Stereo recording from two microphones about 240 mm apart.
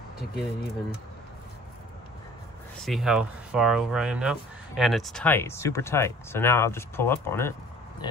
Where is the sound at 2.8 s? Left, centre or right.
Centre.